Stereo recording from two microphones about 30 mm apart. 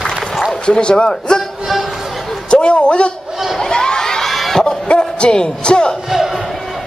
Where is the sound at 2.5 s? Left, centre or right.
Left.